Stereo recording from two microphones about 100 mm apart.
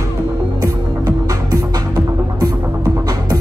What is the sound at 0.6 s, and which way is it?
Music, 35° right (ahead or behind).